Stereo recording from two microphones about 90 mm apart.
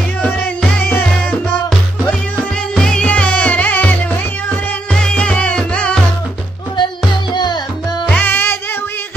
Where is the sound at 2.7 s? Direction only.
10° left (ahead or behind).